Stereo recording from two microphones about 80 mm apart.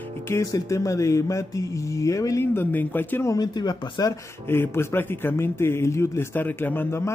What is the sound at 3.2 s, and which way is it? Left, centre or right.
Speech, left.